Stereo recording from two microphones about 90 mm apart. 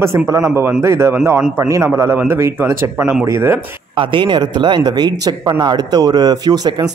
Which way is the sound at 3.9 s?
70° right (ahead or behind).